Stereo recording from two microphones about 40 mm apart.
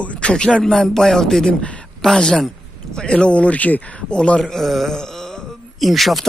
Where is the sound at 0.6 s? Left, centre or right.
Centre.